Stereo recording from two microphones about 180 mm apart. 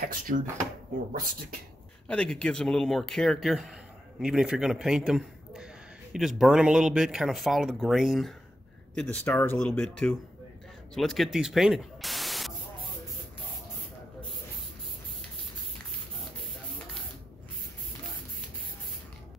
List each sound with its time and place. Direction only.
0.3 s speech: 50° right (ahead or behind)
2.0 s a man's voice: 5° left (ahead or behind)